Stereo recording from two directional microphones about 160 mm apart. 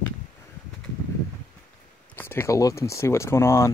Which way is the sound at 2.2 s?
15° left (ahead or behind).